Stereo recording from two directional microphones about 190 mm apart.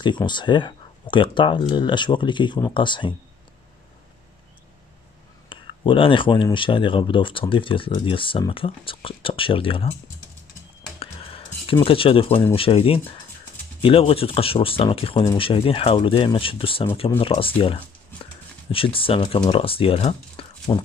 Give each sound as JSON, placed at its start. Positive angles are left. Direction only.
{"t": 0.0, "sound": "speech", "side_deg": 25}
{"t": 5.5, "sound": "speech", "side_deg": 25}
{"t": 11.0, "sound": "a sound", "side_deg": 30}
{"t": 12.5, "sound": "speech", "side_deg": 30}